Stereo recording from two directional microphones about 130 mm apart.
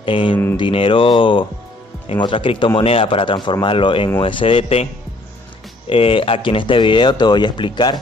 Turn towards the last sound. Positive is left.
turn(degrees=35)  # may be behind; listen again after turning